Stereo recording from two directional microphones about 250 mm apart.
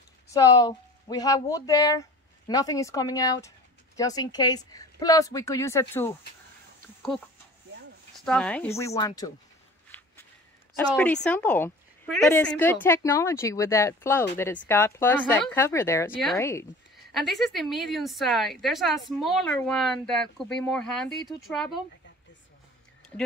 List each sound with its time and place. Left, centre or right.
0.3 s speech: centre
8.3 s a woman's voice: centre
9.8 s walk: centre
11.2 s a woman's voice: centre
16.9 s a woman's voice: centre